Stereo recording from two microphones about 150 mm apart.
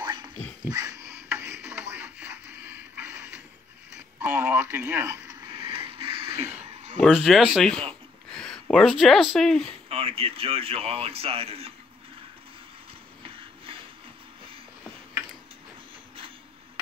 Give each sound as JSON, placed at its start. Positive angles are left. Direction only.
{"t": 0.0, "sound": "a sound", "side_deg": -30}
{"t": 4.2, "sound": "speech", "side_deg": -10}
{"t": 5.9, "sound": "a sound", "side_deg": -40}
{"t": 6.3, "sound": "speech", "side_deg": -15}
{"t": 7.1, "sound": "speech", "side_deg": 0}
{"t": 9.8, "sound": "speech", "side_deg": -40}